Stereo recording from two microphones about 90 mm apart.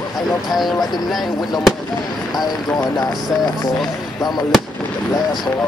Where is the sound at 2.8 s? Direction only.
45° left (ahead or behind).